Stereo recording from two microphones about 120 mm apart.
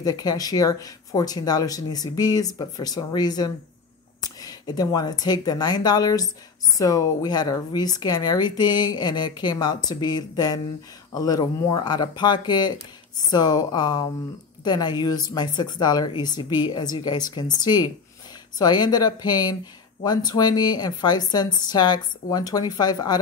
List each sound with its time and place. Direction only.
0.0 s speech: 35° left (ahead or behind)